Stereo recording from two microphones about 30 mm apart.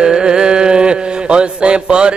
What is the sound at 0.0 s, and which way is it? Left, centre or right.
Mantra, right.